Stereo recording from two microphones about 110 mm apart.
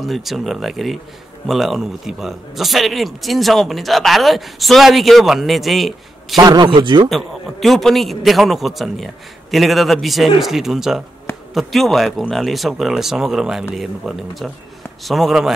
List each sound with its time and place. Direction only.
0.0 s a man's voice: centre (ahead or behind)
6.3 s a man's voice: 40° right (ahead or behind)
7.1 s a man's voice: centre (ahead or behind)